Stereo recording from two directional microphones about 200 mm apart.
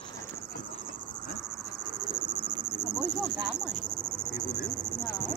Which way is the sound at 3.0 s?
Centre (ahead or behind).